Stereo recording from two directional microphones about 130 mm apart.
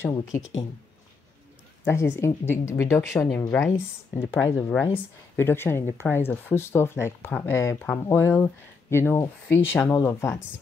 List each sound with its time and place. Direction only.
1.9 s speech: 20° left (ahead or behind)